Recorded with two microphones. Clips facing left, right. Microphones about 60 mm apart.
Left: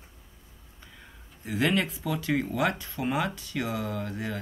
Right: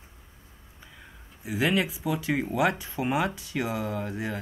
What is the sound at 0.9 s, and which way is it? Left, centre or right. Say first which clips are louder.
Speech: right 1 dB; centre.